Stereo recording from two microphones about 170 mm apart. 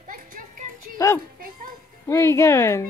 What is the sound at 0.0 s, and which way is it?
Music, 50° right (ahead or behind).